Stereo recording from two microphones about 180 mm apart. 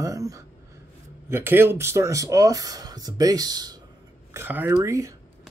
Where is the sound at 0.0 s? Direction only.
20° right (ahead or behind).